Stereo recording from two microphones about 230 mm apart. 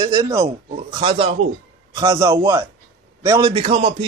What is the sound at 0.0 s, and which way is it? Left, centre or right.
A man's voice, centre.